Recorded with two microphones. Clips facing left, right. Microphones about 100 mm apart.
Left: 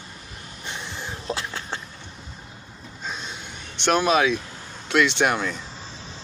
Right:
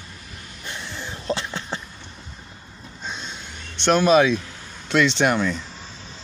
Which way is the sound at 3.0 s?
5° left (ahead or behind).